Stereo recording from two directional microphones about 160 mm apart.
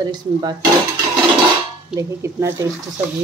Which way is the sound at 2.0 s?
15° right (ahead or behind).